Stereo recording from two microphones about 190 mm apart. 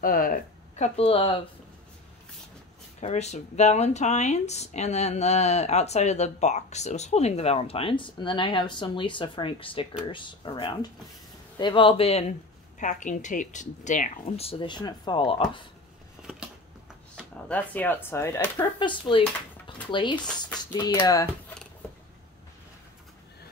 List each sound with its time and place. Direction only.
0.0 s speech: 50° left (ahead or behind)
0.9 s speech: 30° left (ahead or behind)
3.0 s speech: 35° left (ahead or behind)
17.5 s speech: 10° left (ahead or behind)
18.8 s speech: 25° left (ahead or behind)